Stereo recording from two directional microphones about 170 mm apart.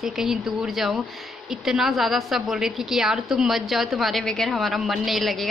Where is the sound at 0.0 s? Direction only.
Centre (ahead or behind).